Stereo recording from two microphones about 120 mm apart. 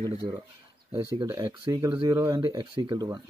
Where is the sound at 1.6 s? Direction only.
30° right (ahead or behind).